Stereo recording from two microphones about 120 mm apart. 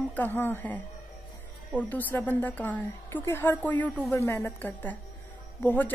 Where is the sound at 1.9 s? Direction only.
15° left (ahead or behind).